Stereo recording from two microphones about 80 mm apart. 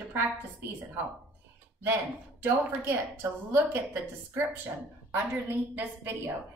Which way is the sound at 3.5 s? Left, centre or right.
Right.